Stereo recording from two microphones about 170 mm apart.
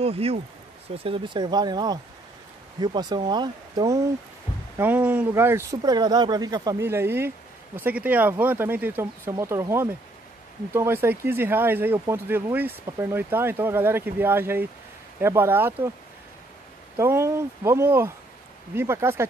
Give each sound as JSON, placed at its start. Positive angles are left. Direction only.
{"t": 0.0, "sound": "speech", "side_deg": -35}
{"t": 4.7, "sound": "speech", "side_deg": -10}
{"t": 16.9, "sound": "speech", "side_deg": -15}